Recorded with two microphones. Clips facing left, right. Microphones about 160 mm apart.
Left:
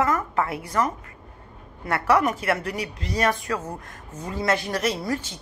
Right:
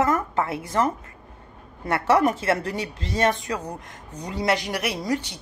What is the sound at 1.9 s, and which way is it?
Speech, 30° right (ahead or behind).